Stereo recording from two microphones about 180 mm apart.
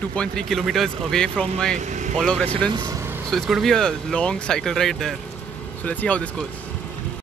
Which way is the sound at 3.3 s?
Centre (ahead or behind).